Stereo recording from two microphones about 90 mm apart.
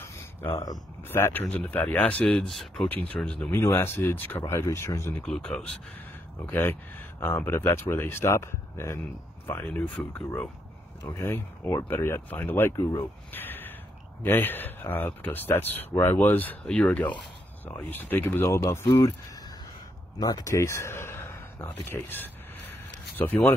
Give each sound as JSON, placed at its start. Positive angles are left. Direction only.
{"t": 0.0, "sound": "a sound", "side_deg": 25}
{"t": 1.0, "sound": "speech", "side_deg": 25}
{"t": 3.5, "sound": "speech", "side_deg": 25}
{"t": 5.2, "sound": "speech", "side_deg": 10}
{"t": 6.5, "sound": "speech", "side_deg": 25}
{"t": 11.1, "sound": "speech", "side_deg": 30}
{"t": 13.3, "sound": "a sound", "side_deg": 20}
{"t": 14.2, "sound": "speech", "side_deg": 20}
{"t": 18.4, "sound": "speech", "side_deg": 35}
{"t": 20.2, "sound": "a sound", "side_deg": 45}